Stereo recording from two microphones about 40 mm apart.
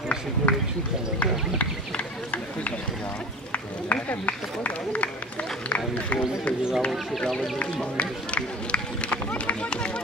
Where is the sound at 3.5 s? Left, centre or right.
Left.